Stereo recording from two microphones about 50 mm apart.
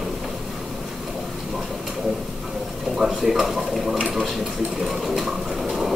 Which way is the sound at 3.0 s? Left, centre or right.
Centre.